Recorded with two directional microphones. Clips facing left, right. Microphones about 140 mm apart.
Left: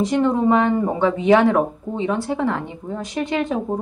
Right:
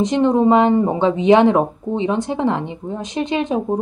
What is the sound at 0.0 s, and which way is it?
Speech, 20° right (ahead or behind).